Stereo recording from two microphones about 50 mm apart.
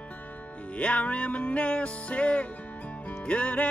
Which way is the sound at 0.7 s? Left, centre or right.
Left.